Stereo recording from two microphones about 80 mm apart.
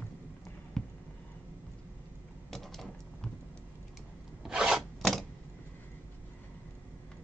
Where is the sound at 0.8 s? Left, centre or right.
Centre.